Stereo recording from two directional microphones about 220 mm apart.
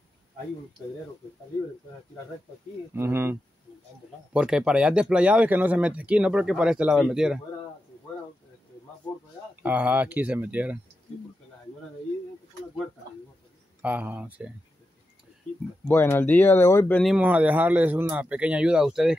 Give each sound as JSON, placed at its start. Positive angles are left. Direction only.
{"t": 2.9, "sound": "speech", "side_deg": -10}
{"t": 9.6, "sound": "speech", "side_deg": -5}
{"t": 13.8, "sound": "speech", "side_deg": -5}
{"t": 15.9, "sound": "speech", "side_deg": 10}